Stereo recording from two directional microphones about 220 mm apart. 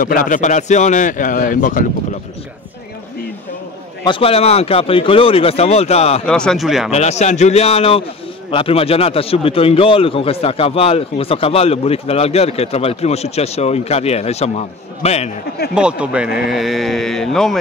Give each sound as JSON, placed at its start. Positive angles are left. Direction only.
{"t": 0.0, "sound": "speech", "side_deg": 35}
{"t": 4.0, "sound": "a man's voice", "side_deg": 25}
{"t": 6.2, "sound": "speech", "side_deg": 5}
{"t": 6.9, "sound": "a man's voice", "side_deg": 30}
{"t": 15.7, "sound": "speech", "side_deg": -5}